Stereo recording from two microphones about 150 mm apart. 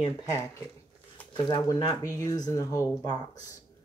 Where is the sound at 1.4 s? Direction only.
30° left (ahead or behind).